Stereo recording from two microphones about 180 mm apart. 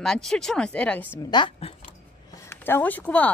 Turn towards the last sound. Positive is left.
turn(degrees=10)  # may be behind; listen again after turning